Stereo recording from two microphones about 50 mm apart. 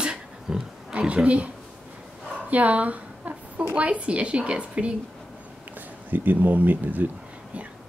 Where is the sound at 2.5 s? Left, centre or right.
Right.